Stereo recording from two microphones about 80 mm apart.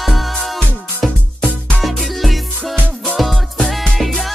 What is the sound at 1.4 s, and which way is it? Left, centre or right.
Music, centre.